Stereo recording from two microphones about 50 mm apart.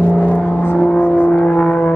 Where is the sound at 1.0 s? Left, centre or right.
Left.